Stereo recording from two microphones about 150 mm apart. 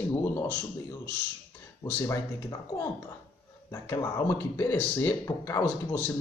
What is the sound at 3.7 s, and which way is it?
A man's voice, 20° left (ahead or behind).